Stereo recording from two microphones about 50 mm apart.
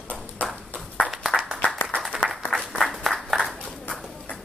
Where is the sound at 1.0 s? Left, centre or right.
Centre.